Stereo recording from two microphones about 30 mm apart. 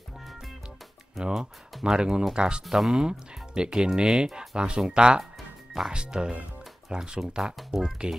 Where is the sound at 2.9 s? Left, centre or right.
Right.